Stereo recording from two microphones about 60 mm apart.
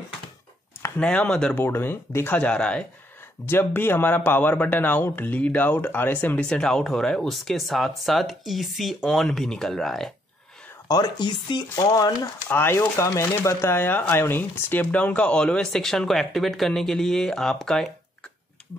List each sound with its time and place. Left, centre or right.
0.9 s speech: centre
1.5 s speech: left
2.3 s speech: centre
3.4 s speech: left
6.4 s speech: centre
11.8 s speech: left
12.4 s speech: left
13.0 s speech: left
13.7 s speech: left; by 18.3 s centre